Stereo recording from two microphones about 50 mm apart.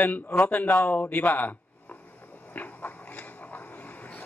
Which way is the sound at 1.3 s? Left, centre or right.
Left.